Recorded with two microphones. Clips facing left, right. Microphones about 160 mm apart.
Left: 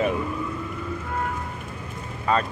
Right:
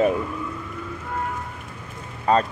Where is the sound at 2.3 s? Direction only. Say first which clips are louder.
Right 4 dB; 40° right (ahead or behind).